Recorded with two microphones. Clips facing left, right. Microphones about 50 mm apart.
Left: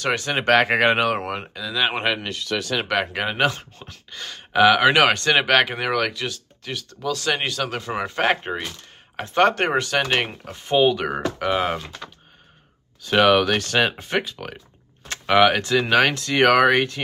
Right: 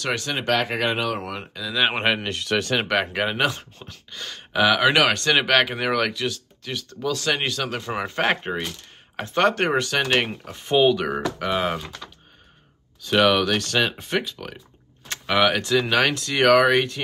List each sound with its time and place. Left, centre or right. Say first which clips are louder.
0.0 s speech: left 3 dB; left
0.5 s speech: left 6 dB; left
1.2 s speech: left 3 dB; left
1.7 s speech: right 1 dB; centre
2.5 s speech: right 3 dB; right
2.9 s speech: even; centre
13.0 s speech: left 2 dB; centre